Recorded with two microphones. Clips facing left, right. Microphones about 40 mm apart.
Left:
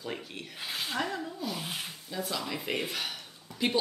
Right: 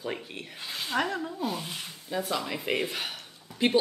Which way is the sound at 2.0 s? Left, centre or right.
Right.